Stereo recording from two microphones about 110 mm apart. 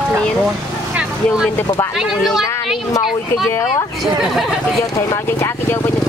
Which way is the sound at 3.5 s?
30° left (ahead or behind).